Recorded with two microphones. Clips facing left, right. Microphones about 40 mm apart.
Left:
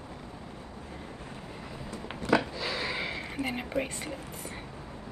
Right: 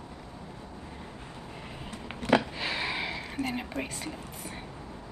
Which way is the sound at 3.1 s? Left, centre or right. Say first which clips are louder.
Even; centre.